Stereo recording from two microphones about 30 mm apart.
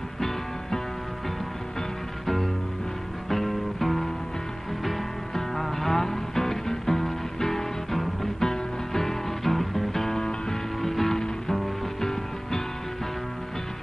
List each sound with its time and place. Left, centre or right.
2.2 s music: centre
5.3 s music: centre